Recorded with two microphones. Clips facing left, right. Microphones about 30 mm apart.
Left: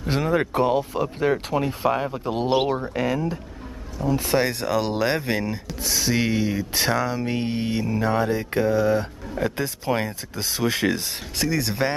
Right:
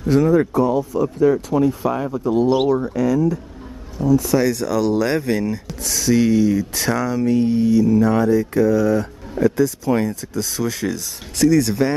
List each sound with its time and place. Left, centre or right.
0.0 s speech: left
0.3 s speech: left
1.2 s speech: left
7.2 s speech: left
11.3 s speech: centre